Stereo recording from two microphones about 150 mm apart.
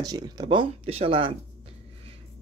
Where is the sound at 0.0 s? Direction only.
25° right (ahead or behind).